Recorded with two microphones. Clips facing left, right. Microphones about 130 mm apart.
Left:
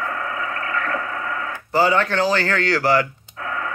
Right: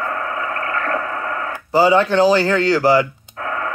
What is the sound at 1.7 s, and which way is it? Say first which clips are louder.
Speech: right 5 dB; 15° right (ahead or behind).